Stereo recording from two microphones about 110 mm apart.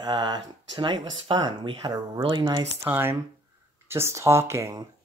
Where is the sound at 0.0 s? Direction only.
40° right (ahead or behind).